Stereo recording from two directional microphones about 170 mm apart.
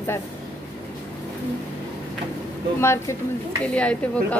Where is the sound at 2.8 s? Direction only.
15° left (ahead or behind).